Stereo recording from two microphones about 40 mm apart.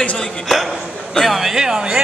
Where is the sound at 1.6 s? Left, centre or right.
Centre.